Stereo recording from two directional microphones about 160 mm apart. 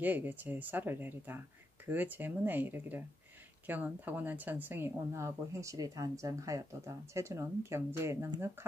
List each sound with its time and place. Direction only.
0.0 s speech: 10° right (ahead or behind)